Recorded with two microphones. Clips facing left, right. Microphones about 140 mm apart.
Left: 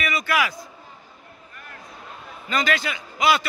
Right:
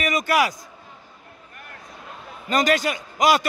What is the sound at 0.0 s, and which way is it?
Speech, 45° right (ahead or behind).